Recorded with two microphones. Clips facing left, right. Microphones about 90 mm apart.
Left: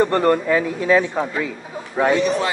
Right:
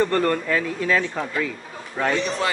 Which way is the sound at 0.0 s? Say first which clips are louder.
Left 4 dB; 20° left (ahead or behind).